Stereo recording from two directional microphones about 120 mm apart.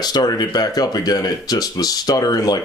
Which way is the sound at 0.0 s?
35° left (ahead or behind).